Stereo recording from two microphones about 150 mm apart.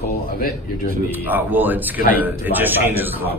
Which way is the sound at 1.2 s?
10° right (ahead or behind).